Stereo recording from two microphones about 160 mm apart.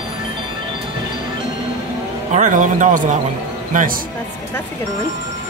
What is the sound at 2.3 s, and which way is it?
Speech, 50° right (ahead or behind).